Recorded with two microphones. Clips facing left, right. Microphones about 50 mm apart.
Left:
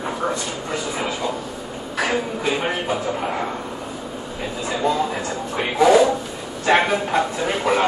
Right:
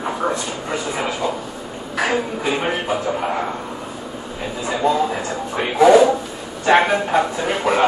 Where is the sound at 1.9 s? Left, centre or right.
Centre.